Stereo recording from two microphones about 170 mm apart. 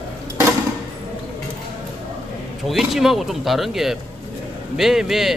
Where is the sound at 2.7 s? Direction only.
Centre (ahead or behind).